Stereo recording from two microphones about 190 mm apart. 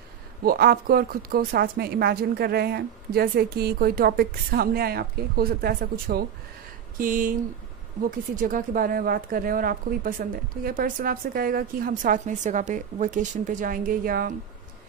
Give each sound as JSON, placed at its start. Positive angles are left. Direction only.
{"t": 0.4, "sound": "speech", "side_deg": -50}
{"t": 8.4, "sound": "speech", "side_deg": -45}